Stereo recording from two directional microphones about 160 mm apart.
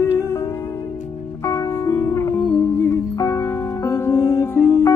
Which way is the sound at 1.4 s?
20° left (ahead or behind).